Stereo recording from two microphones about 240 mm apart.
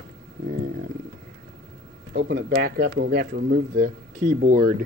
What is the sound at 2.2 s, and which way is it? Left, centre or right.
Speech, right.